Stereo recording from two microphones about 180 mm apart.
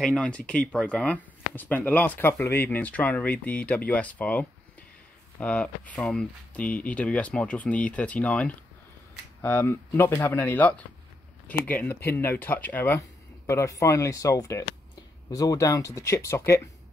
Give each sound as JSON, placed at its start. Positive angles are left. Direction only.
{"t": 0.0, "sound": "speech", "side_deg": 5}